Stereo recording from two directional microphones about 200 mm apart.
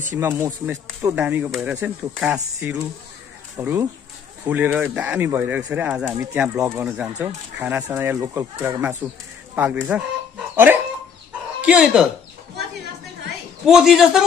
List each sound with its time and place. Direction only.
0.1 s a man's voice: 15° right (ahead or behind)
13.7 s a man's voice: centre (ahead or behind)